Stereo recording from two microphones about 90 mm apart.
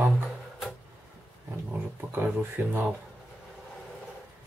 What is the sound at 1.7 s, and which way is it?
Speech, 20° right (ahead or behind).